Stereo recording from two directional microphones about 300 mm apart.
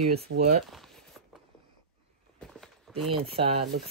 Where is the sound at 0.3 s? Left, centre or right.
Right.